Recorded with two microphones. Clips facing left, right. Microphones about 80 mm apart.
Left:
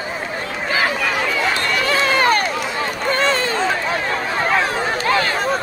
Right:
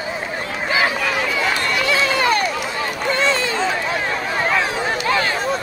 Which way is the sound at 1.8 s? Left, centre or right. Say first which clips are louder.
Left 2 dB; left.